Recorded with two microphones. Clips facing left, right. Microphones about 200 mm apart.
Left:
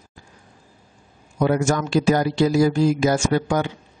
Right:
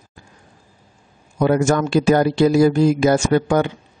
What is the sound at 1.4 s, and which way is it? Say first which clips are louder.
A man's voice: right 3 dB; 60° right (ahead or behind).